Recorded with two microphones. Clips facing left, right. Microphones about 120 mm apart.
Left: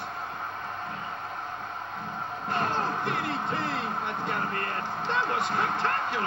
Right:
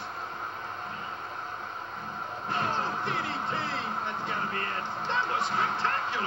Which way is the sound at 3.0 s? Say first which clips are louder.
Left 2 dB; 55° left (ahead or behind).